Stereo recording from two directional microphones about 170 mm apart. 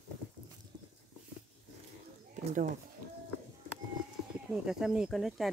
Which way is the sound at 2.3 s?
45° right (ahead or behind).